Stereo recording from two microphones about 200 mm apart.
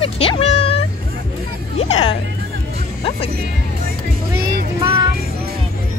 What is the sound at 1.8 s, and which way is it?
Music, 30° left (ahead or behind).